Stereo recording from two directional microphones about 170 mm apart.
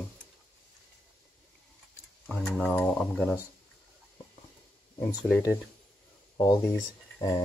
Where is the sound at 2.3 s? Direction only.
5° left (ahead or behind).